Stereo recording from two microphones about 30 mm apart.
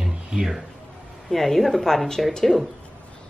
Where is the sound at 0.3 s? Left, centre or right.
Right.